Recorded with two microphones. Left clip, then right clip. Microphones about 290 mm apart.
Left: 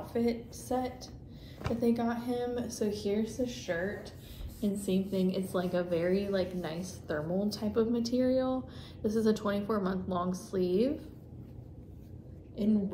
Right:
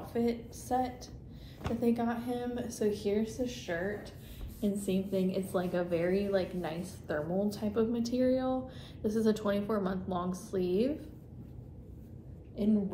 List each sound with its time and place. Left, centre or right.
0.0 s a woman's voice: centre
12.5 s a woman's voice: centre